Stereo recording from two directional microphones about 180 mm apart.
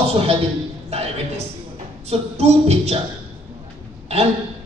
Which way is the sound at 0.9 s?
35° right (ahead or behind).